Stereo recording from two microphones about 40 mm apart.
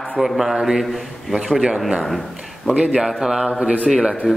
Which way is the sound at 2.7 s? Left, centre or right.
Right.